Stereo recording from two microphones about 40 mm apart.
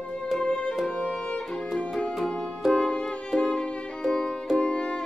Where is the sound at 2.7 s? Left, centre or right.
Left.